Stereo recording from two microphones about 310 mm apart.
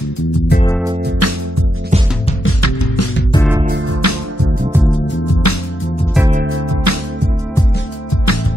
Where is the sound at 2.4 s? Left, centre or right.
Left.